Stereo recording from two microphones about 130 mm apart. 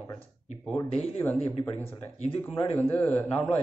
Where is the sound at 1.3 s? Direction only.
50° left (ahead or behind).